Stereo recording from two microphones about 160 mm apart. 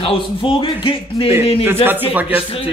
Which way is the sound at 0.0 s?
30° left (ahead or behind).